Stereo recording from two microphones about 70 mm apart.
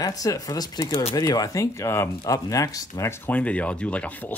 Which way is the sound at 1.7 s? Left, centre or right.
Left.